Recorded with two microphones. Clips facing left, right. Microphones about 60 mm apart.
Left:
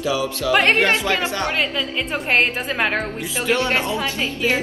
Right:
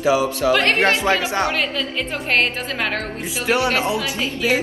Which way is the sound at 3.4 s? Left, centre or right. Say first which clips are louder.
Right 1 dB; centre.